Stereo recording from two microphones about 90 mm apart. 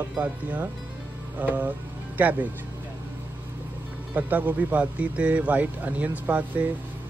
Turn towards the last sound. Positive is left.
turn(degrees=-20)  # may be behind; listen again after turning